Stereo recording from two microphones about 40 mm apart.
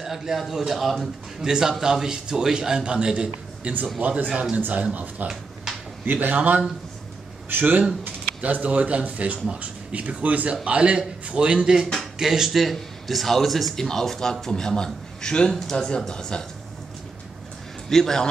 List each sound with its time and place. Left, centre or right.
0.0 s a man's voice: centre
1.4 s a man's voice: centre
4.6 s speech: right
8.4 s a man's voice: right; by 15.5 s centre
15.5 s speech: centre
16.1 s a man's voice: centre
17.8 s a man's voice: centre